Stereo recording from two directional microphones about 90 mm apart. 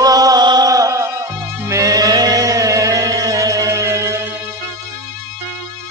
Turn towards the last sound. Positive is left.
turn(degrees=-30)  # may be behind; listen again after turning